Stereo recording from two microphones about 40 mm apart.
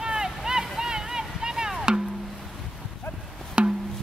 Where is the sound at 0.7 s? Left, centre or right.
Centre.